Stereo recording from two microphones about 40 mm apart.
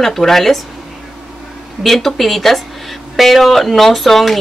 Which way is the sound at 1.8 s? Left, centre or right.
Centre.